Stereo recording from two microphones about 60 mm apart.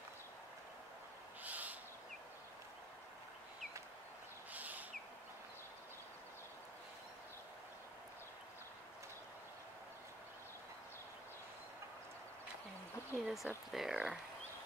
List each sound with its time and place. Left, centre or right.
1.4 s owl: right
4.5 s a sound: right
13.2 s speech: centre